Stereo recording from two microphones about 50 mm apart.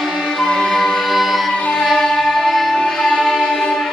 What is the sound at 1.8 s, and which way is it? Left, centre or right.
Music, centre.